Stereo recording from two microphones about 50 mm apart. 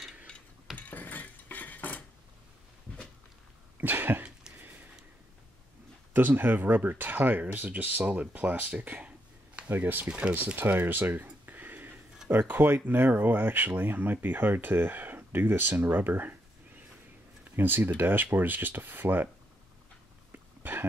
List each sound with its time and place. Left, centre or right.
0.7 s chink: left
3.8 s cough: right
4.6 s a sound: right
6.1 s speech: right
10.0 s speech: right